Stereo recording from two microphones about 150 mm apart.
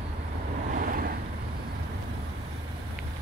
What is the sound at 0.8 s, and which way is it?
Vehicle, 75° right (ahead or behind).